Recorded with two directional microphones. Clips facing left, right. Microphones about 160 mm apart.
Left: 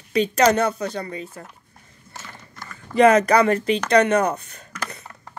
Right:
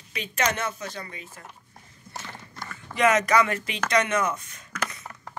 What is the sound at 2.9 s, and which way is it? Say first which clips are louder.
Speech: left 6 dB; 35° left (ahead or behind).